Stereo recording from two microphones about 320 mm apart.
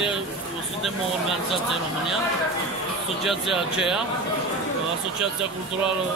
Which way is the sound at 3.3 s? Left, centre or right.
Centre.